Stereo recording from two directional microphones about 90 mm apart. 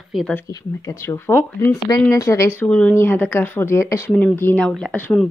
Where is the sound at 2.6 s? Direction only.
10° left (ahead or behind).